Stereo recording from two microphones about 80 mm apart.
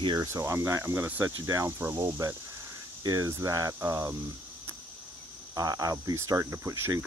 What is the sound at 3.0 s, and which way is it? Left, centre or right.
Speech, right.